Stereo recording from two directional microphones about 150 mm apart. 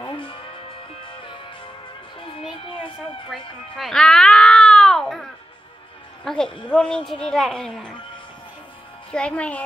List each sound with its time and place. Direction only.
0.0 s music: 30° left (ahead or behind)
2.4 s music: centre (ahead or behind)
6.2 s a sound: 5° left (ahead or behind)
6.7 s speech: 5° left (ahead or behind)
9.1 s speech: 5° left (ahead or behind)